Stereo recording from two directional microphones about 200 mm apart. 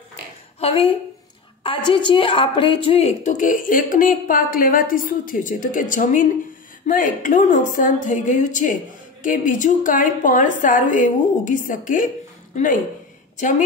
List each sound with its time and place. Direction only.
0.6 s a woman's voice: 30° left (ahead or behind)